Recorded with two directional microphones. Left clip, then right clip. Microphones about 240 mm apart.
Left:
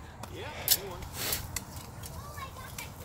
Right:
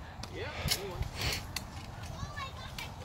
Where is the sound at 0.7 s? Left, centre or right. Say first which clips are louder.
Left 4 dB; left.